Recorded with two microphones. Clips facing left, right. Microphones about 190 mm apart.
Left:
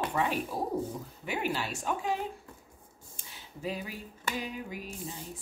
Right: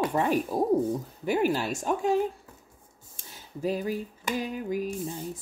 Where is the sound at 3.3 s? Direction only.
45° right (ahead or behind).